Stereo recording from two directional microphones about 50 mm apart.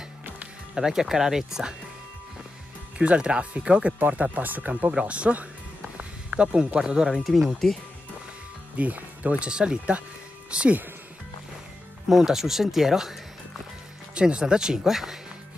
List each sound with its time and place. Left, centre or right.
0.7 s speech: centre
3.0 s speech: right
5.9 s a sound: right
6.8 s speech: centre
7.2 s speech: centre
7.5 s speech: centre
8.7 s speech: right
9.5 s speech: centre
12.1 s speech: centre
14.1 s speech: right; by 15.1 s centre